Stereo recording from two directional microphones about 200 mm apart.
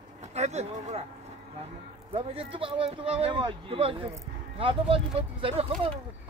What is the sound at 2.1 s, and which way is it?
Speech, 30° right (ahead or behind).